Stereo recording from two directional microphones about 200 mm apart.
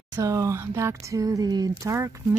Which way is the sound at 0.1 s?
15° right (ahead or behind).